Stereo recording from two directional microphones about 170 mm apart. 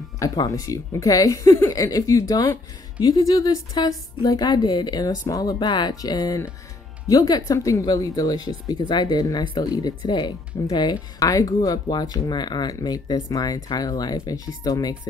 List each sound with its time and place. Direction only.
0.2 s speech: 20° left (ahead or behind)